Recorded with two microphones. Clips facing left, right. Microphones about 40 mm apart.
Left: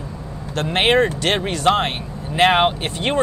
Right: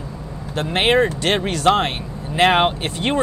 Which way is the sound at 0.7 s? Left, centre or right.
Left.